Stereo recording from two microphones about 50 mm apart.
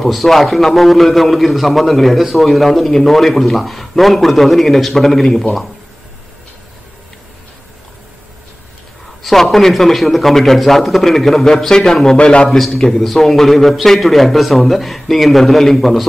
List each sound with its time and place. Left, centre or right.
0.0 s a man's voice: centre
9.2 s a man's voice: centre; by 12.4 s left
12.4 s a man's voice: centre